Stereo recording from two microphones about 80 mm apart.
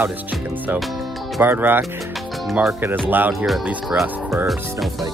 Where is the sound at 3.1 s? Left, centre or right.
Right.